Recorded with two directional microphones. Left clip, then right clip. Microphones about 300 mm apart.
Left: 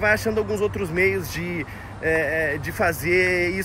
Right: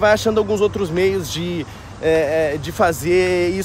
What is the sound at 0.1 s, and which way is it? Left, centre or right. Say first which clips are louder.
Speech: right 5 dB; centre.